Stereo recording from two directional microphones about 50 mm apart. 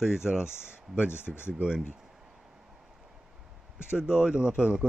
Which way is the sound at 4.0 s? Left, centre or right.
Centre.